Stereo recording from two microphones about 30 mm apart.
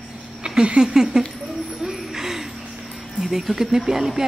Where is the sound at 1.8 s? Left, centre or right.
Centre.